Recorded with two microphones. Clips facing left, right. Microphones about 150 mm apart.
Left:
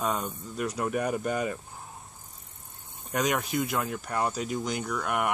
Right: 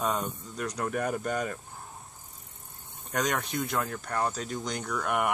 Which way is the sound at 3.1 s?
5° left (ahead or behind).